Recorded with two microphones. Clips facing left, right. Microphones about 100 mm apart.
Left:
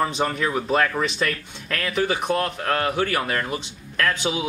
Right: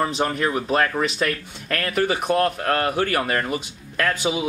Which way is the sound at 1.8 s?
55° right (ahead or behind).